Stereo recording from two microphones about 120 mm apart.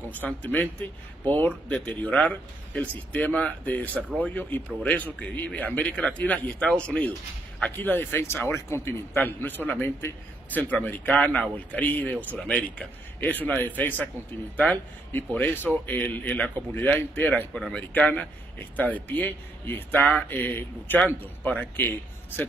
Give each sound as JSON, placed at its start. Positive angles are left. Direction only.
{"t": 0.1, "sound": "a man's voice", "side_deg": 15}